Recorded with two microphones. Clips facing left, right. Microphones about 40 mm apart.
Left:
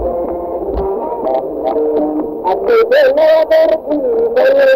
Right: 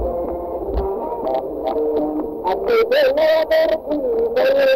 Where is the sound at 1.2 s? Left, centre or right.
Centre.